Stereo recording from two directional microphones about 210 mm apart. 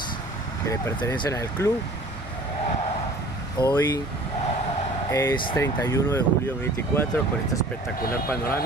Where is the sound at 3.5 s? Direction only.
20° left (ahead or behind).